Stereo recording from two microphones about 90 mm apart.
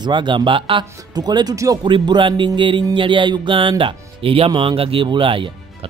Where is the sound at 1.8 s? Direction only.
60° right (ahead or behind).